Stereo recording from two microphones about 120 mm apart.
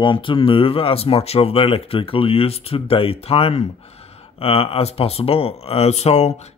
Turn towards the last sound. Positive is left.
turn(degrees=65)  # may be behind; listen again after turning